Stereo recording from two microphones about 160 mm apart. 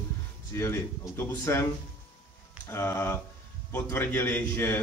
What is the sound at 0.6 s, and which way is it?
A man's voice, 15° left (ahead or behind).